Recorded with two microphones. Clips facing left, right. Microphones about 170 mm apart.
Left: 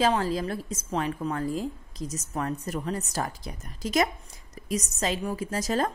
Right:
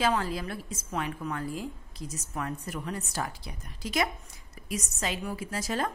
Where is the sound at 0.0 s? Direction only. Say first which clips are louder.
Left 4 dB; 35° left (ahead or behind).